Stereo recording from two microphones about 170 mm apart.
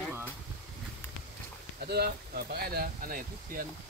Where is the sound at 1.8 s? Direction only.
65° right (ahead or behind).